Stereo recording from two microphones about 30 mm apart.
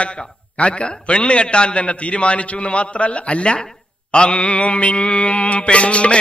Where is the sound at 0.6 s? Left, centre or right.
Left.